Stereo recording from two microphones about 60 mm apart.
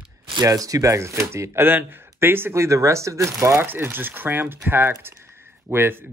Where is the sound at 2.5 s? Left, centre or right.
Right.